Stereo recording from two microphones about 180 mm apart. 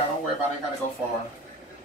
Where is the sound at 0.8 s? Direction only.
45° left (ahead or behind).